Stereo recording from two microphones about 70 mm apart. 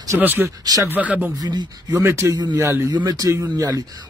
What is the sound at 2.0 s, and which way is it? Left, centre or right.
Speech, right.